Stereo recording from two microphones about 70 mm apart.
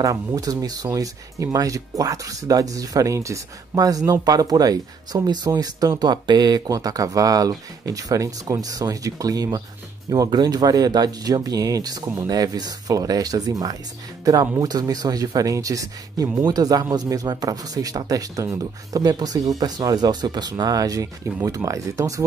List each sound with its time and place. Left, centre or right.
0.0 s speech: right
0.8 s speech: right
5.5 s speech: right
5.9 s speech: right
10.3 s speech: right
16.4 s speech: right